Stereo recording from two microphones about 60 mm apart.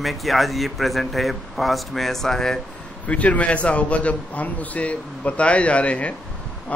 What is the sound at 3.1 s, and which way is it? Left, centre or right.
A man's voice, left.